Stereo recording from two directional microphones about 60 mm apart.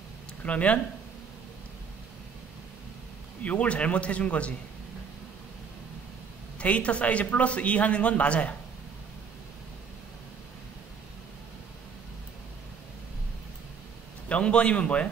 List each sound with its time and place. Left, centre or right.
0.4 s speech: left
3.4 s speech: left
6.6 s speech: left
14.3 s speech: centre